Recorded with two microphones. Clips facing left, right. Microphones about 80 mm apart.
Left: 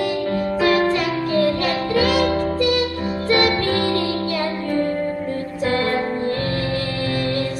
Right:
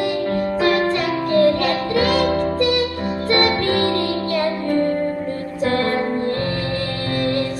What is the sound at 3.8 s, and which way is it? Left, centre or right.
Music, right.